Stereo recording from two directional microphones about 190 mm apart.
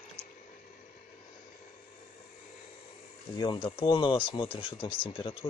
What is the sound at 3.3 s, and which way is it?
Speech, 25° left (ahead or behind).